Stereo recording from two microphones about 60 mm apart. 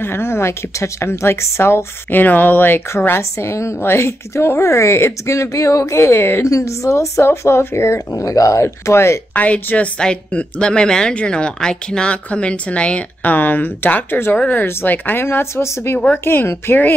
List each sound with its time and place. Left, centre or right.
0.0 s a woman's voice: left
2.0 s speech: left
3.2 s a woman's voice: left
6.4 s a woman's voice: left
8.1 s speech: left
9.3 s a woman's voice: left
15.5 s a woman's voice: left